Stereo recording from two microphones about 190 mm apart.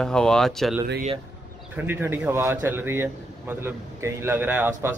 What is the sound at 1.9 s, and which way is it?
A man's voice, 10° right (ahead or behind).